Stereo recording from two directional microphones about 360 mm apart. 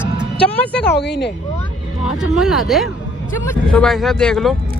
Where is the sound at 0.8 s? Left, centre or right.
Left.